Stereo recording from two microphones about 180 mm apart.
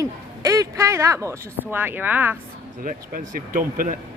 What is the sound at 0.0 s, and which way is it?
Speech, 20° right (ahead or behind).